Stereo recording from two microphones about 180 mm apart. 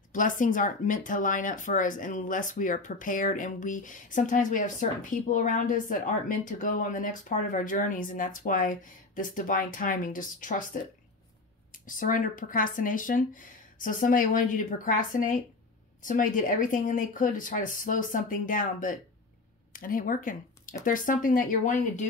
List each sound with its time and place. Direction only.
0.1 s speech: 45° left (ahead or behind)